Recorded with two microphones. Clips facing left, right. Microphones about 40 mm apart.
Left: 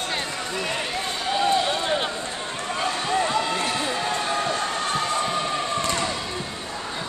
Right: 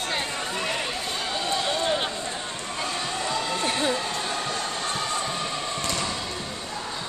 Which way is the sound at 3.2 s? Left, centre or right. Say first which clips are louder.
Left 4 dB; left.